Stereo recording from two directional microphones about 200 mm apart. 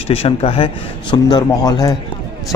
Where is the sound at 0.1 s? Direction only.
30° left (ahead or behind).